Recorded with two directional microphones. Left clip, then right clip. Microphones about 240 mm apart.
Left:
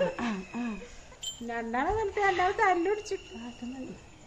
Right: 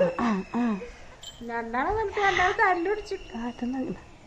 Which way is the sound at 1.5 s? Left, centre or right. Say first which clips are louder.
Right 3 dB; left.